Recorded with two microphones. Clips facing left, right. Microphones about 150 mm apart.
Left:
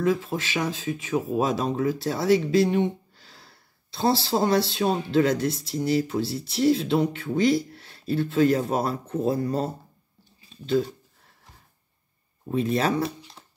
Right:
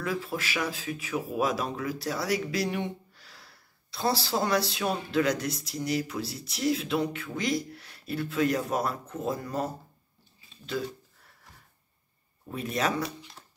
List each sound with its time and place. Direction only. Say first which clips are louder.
0.0 s speech: left 7 dB; 25° left (ahead or behind)
12.4 s speech: left 6 dB; 30° left (ahead or behind)